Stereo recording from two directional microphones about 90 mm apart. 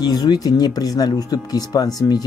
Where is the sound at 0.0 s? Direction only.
50° left (ahead or behind).